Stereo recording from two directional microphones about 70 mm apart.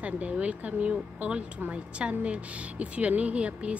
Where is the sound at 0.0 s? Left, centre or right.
Centre.